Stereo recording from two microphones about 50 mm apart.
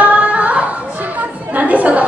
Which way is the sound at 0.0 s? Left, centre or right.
Right.